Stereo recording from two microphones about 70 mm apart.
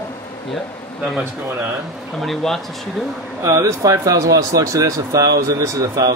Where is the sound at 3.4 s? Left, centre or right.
Right.